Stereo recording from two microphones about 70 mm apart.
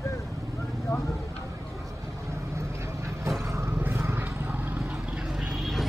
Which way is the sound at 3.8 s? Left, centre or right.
Right.